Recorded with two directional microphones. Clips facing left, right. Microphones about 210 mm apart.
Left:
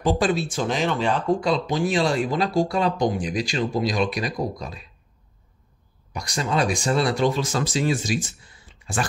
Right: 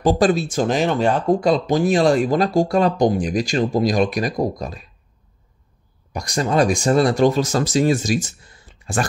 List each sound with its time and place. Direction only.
0.0 s speech: 40° right (ahead or behind)
6.1 s speech: 45° right (ahead or behind)